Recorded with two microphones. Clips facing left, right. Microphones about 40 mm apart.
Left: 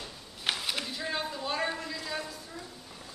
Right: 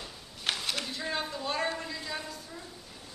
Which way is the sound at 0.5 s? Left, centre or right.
Centre.